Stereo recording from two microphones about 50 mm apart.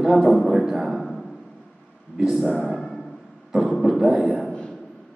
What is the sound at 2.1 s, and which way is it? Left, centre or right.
Speech, centre.